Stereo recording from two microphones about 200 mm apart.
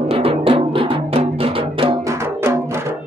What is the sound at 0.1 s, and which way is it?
Music, 30° right (ahead or behind).